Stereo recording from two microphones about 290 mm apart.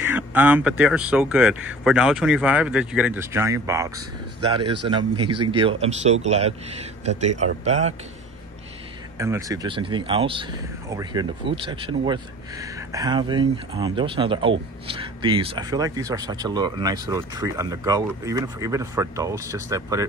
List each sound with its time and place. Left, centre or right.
0.0 s speech: centre; by 7.9 s right
9.2 s speech: centre